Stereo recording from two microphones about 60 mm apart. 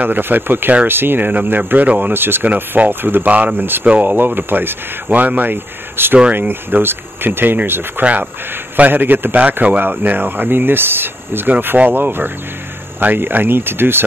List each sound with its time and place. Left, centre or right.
0.0 s speech: right